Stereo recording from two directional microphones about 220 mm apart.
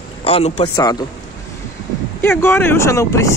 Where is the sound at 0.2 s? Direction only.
25° left (ahead or behind).